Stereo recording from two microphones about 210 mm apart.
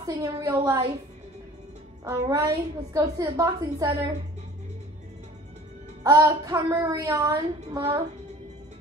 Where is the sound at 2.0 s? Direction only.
15° right (ahead or behind).